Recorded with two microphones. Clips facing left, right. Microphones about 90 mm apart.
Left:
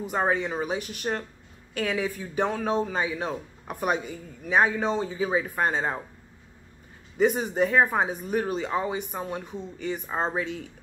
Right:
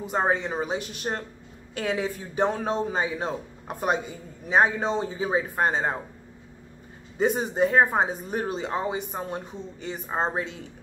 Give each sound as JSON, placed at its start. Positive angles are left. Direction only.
{"t": 0.0, "sound": "speech", "side_deg": -25}
{"t": 7.2, "sound": "speech", "side_deg": -30}